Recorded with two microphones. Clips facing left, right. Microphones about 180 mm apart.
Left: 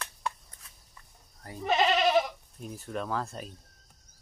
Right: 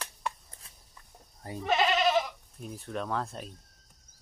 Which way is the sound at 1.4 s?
20° right (ahead or behind).